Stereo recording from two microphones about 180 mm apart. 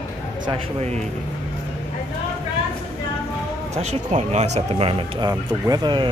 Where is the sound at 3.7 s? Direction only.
40° right (ahead or behind).